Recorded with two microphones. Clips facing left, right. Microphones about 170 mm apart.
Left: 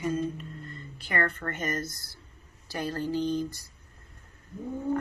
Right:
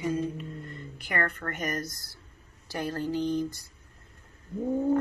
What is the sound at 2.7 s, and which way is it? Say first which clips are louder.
Speech: even; 20° right (ahead or behind).